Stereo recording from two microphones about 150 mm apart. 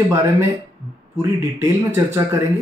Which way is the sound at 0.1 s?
20° right (ahead or behind).